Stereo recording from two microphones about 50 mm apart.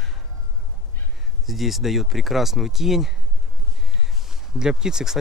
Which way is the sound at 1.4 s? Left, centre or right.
Centre.